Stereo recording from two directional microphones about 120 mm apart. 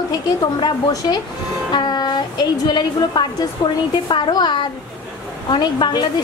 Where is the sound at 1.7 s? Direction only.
35° left (ahead or behind).